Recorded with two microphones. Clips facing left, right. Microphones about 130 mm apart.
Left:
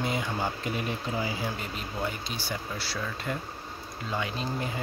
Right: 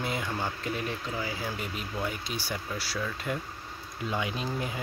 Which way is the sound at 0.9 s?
20° left (ahead or behind).